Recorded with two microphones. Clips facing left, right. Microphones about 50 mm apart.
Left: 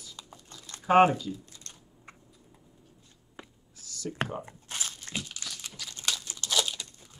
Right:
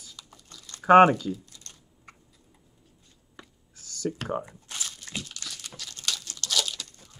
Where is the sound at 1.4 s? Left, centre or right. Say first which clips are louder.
Left 1 dB; left.